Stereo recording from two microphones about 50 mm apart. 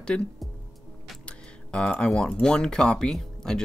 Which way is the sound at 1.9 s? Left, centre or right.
Centre.